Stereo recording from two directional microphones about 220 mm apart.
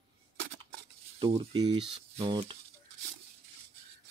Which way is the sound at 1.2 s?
25° right (ahead or behind).